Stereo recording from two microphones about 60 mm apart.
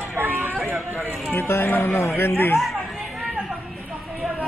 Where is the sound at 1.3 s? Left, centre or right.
Left.